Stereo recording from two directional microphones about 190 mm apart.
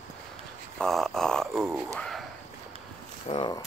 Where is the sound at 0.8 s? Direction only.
Centre (ahead or behind).